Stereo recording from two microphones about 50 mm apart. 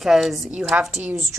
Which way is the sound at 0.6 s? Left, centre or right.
Centre.